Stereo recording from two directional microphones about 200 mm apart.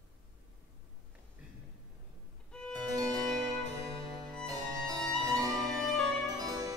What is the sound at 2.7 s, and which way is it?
Harpsichord, 20° right (ahead or behind).